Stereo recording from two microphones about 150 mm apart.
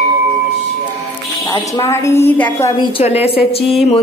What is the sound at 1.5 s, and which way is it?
A woman's voice, 25° left (ahead or behind).